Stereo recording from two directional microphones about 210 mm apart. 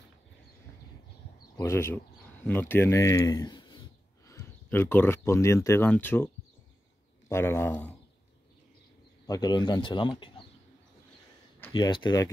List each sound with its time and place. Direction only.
1.6 s speech: 10° left (ahead or behind)
9.2 s speech: 20° left (ahead or behind)
11.7 s speech: 20° left (ahead or behind)